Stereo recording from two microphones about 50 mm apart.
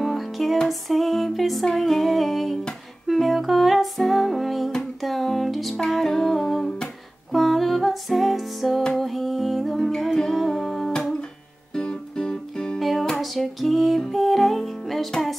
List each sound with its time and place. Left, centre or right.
0.0 s music: centre
5.9 s humming: centre
7.3 s music: centre
13.1 s music: centre